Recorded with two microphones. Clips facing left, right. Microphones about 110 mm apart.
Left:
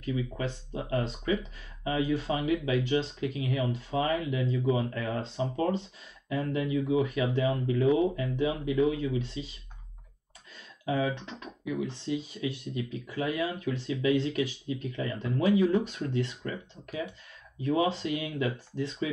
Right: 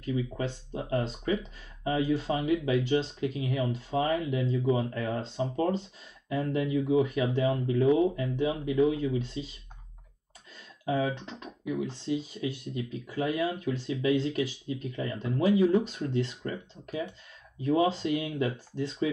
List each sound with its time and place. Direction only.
0.7 s speech: 30° right (ahead or behind)
6.2 s speech: 35° right (ahead or behind)
11.0 s speech: 35° right (ahead or behind)